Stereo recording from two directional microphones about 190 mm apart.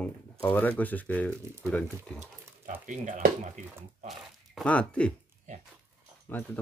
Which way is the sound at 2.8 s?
40° right (ahead or behind).